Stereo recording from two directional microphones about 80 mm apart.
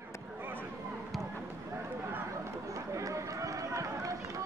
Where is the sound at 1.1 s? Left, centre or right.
Centre.